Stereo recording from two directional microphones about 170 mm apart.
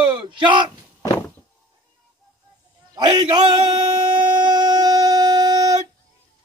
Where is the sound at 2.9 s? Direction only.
25° right (ahead or behind).